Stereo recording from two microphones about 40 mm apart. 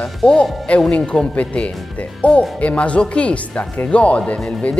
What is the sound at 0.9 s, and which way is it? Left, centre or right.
Speech, left.